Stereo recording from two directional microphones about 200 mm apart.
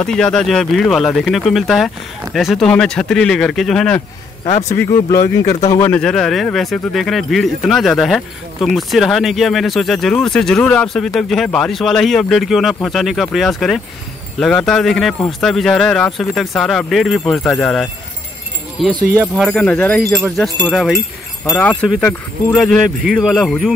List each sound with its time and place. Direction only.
0.0 s speech: 5° left (ahead or behind)
4.6 s speech: 15° left (ahead or behind)
5.9 s speech: 5° left (ahead or behind)